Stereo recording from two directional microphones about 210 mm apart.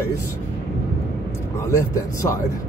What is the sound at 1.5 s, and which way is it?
Speech, 15° left (ahead or behind).